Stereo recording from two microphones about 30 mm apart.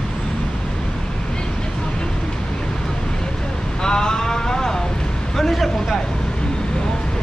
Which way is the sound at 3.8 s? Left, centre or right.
Left.